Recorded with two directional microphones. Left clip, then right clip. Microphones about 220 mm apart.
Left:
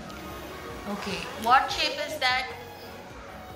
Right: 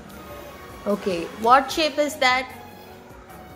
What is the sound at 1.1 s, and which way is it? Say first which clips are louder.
A woman's voice: right 5 dB; 40° right (ahead or behind).